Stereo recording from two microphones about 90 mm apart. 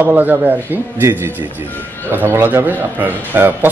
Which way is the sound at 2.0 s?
20° right (ahead or behind).